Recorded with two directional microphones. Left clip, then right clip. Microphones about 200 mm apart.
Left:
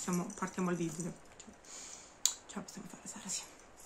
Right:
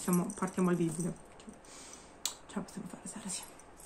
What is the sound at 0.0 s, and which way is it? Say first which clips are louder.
Speech: right 4 dB; 5° left (ahead or behind).